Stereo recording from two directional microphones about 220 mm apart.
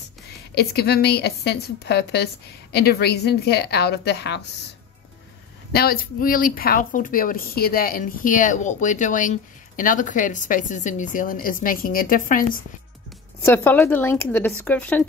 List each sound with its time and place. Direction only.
0.6 s a woman's voice: 45° left (ahead or behind)
5.7 s speech: 45° left (ahead or behind)
13.5 s speech: 10° left (ahead or behind)